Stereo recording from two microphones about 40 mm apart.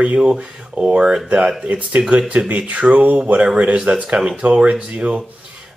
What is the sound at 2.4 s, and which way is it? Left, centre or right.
Speech, right.